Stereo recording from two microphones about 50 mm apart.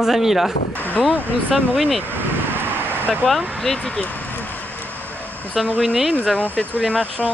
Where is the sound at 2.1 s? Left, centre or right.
Right.